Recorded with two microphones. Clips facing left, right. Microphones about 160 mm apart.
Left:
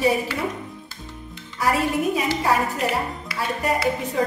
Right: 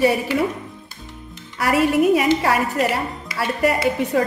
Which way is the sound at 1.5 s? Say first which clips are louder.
Right 4 dB; 70° right (ahead or behind).